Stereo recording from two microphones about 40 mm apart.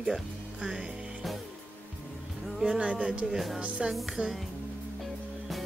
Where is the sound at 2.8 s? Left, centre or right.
Right.